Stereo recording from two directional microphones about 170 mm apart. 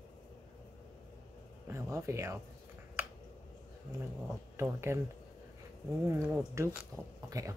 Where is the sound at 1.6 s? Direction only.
15° right (ahead or behind).